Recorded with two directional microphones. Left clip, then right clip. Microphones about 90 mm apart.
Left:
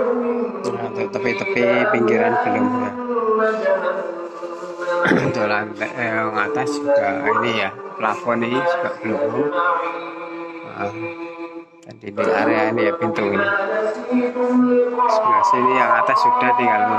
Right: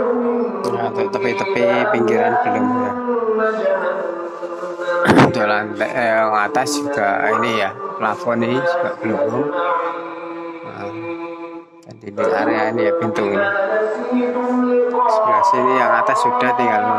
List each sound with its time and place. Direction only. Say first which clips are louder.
0.0 s music: right 2 dB; 25° right (ahead or behind)
0.7 s music: right 4 dB; 35° right (ahead or behind)
7.3 s speech: right 2 dB; 45° right (ahead or behind)
7.6 s music: right 2 dB; 35° right (ahead or behind)
12.3 s music: even; 25° right (ahead or behind)